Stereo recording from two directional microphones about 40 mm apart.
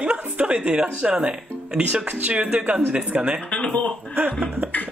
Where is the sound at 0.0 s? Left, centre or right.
Right.